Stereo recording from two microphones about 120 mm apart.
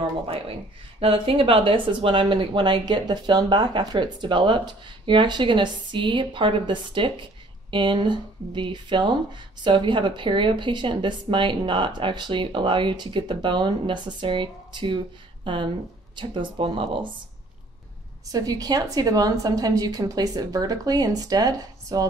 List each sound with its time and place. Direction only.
0.3 s speech: 50° right (ahead or behind)
18.3 s speech: 30° right (ahead or behind)